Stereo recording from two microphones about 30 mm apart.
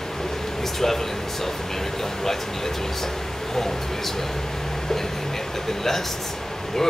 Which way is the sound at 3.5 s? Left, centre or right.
Centre.